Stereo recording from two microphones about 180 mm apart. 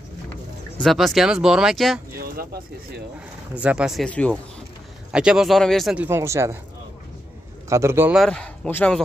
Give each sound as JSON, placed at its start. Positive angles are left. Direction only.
{"t": 0.7, "sound": "speech", "side_deg": 0}
{"t": 2.1, "sound": "speech", "side_deg": -55}
{"t": 3.5, "sound": "speech", "side_deg": -5}
{"t": 6.0, "sound": "speech", "side_deg": -15}
{"t": 7.7, "sound": "speech", "side_deg": -15}
{"t": 8.2, "sound": "speech", "side_deg": 5}